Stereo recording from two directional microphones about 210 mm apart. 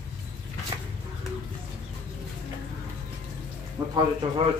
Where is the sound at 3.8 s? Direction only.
15° right (ahead or behind).